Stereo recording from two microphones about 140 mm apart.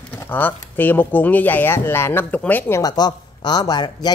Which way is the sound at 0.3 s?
15° left (ahead or behind).